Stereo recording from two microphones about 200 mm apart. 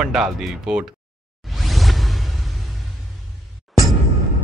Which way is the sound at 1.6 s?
Centre (ahead or behind).